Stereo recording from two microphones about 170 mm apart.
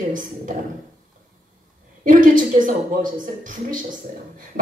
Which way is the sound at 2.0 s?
50° right (ahead or behind).